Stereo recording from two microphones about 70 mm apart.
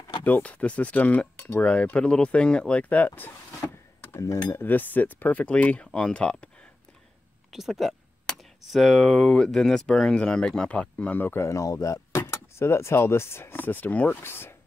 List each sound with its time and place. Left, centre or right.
0.2 s cutlery: left
1.6 s speech: centre
4.5 s cutlery: left
5.9 s speech: centre
7.5 s speech: centre
11.1 s speech: left